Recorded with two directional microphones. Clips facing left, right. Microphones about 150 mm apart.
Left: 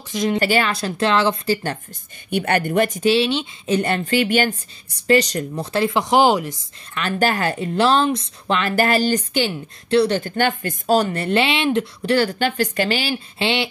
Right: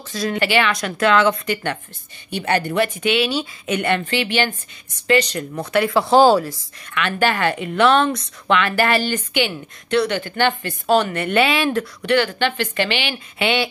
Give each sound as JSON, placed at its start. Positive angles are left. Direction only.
{"t": 0.1, "sound": "speech", "side_deg": 20}
{"t": 0.4, "sound": "speech", "side_deg": 40}
{"t": 2.3, "sound": "speech", "side_deg": 50}
{"t": 5.6, "sound": "speech", "side_deg": 30}
{"t": 6.9, "sound": "speech", "side_deg": 35}